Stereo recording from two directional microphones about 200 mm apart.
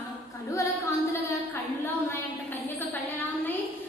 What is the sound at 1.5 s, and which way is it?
Speech, 10° left (ahead or behind).